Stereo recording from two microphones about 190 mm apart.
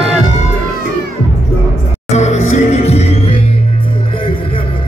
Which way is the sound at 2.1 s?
35° left (ahead or behind).